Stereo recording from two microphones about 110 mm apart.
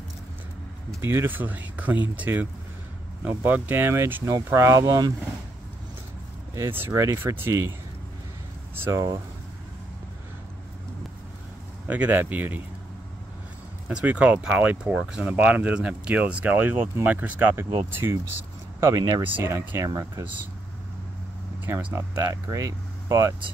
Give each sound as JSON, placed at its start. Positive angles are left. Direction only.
{"t": 1.0, "sound": "speech", "side_deg": -20}
{"t": 6.5, "sound": "speech", "side_deg": -20}
{"t": 8.7, "sound": "speech", "side_deg": -20}
{"t": 11.9, "sound": "speech", "side_deg": -15}
{"t": 13.8, "sound": "speech", "side_deg": -10}
{"t": 19.3, "sound": "speech", "side_deg": -20}
{"t": 21.6, "sound": "speech", "side_deg": -20}